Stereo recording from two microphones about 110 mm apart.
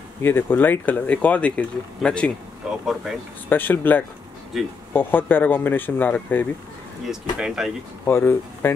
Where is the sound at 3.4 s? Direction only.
15° left (ahead or behind).